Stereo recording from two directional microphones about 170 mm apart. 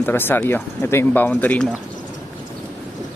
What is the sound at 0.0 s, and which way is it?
Speech, 10° left (ahead or behind).